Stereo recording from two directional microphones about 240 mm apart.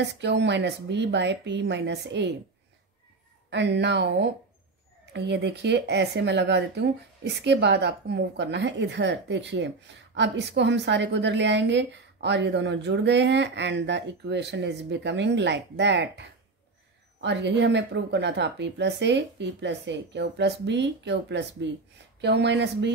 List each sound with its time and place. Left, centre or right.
0.0 s a woman's voice: right
3.4 s a woman's voice: right